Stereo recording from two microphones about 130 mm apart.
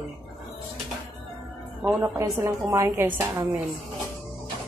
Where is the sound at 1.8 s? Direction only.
20° right (ahead or behind).